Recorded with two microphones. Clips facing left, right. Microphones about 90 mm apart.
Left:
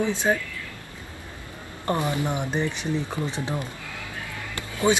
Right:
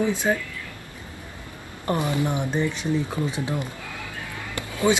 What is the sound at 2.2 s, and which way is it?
Speech, 20° left (ahead or behind).